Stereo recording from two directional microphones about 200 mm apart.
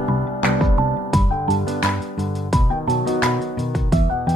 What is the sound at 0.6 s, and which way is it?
Music, centre (ahead or behind).